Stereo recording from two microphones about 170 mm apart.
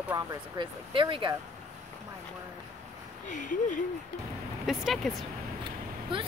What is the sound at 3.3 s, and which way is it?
Speech, 50° left (ahead or behind).